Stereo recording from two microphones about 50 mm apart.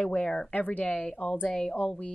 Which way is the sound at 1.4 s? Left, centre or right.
Centre.